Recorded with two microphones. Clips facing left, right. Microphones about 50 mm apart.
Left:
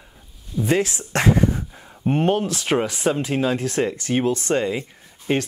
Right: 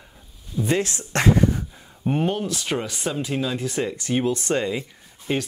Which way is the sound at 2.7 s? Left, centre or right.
Left.